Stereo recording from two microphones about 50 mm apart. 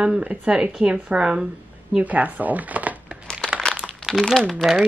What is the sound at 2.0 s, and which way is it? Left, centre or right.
Speech, right.